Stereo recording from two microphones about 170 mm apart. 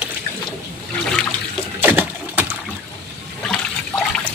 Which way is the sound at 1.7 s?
10° right (ahead or behind).